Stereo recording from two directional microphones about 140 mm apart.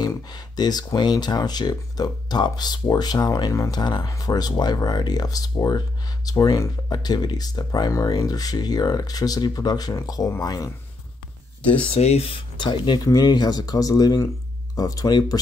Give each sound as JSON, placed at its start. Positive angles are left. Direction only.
{"t": 0.0, "sound": "speech", "side_deg": 30}
{"t": 11.9, "sound": "speech", "side_deg": 45}